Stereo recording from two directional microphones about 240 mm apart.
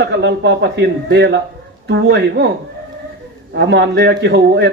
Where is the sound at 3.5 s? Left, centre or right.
Right.